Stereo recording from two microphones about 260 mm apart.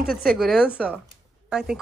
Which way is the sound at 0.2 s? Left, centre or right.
Centre.